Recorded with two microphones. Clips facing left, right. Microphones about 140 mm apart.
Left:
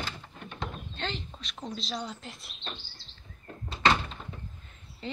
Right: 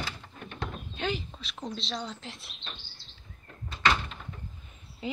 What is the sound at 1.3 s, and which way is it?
Speech, centre (ahead or behind).